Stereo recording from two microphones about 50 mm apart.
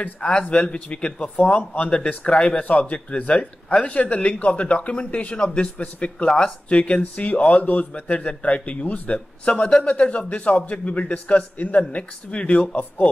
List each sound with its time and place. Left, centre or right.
0.0 s speech: left